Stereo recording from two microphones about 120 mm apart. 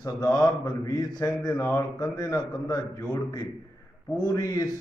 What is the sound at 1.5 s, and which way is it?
Mantra, 25° left (ahead or behind).